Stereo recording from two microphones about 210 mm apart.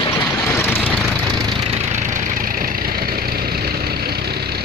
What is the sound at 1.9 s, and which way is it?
Vehicle, 40° right (ahead or behind).